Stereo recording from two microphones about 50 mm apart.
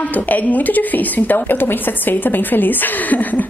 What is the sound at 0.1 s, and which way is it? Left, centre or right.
A woman's voice, left.